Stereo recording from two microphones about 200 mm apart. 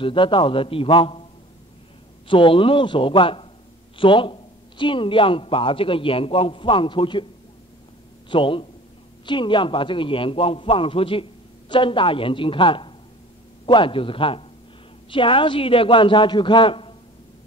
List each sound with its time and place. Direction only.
0.0 s speech: 25° left (ahead or behind)
2.2 s speech: 25° left (ahead or behind)
8.3 s speech: 25° left (ahead or behind)